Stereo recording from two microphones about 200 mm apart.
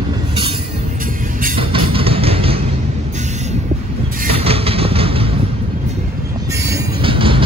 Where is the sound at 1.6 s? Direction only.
25° right (ahead or behind).